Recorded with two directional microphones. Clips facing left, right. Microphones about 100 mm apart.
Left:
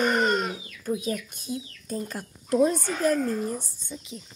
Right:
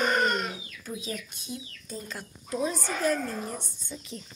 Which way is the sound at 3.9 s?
15° left (ahead or behind).